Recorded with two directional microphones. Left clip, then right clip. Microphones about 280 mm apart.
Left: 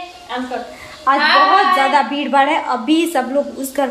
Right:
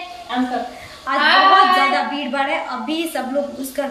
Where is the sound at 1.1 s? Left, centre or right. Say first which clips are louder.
Left 1 dB; centre.